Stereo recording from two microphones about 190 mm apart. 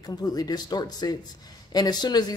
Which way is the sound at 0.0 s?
20° left (ahead or behind).